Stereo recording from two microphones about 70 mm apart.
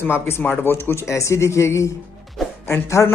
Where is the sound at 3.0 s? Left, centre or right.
Left.